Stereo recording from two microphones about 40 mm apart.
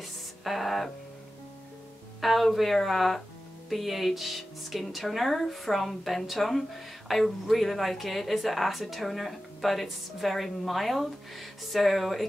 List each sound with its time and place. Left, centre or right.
0.0 s music: centre
2.2 s speech: centre